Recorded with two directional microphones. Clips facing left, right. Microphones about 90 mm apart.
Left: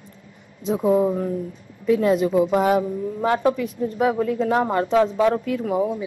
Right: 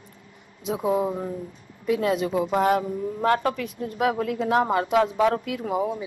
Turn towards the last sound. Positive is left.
turn(degrees=-15)  # may be behind; listen again after turning